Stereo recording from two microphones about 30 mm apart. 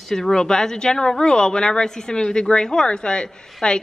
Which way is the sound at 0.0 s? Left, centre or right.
Centre.